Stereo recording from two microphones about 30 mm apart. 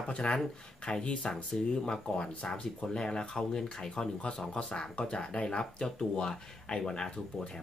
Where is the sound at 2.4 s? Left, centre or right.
Left; by 4.1 s centre.